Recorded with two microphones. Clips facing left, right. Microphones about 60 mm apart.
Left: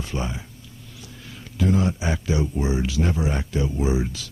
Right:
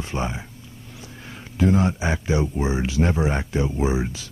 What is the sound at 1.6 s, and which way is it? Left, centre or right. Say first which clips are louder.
Speech: right 2 dB; right.